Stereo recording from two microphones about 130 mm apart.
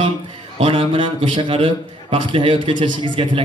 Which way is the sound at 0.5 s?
45° right (ahead or behind).